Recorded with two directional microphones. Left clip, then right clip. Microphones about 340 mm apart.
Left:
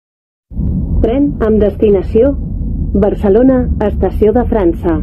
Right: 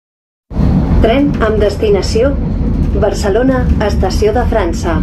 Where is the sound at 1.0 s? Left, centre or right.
Left.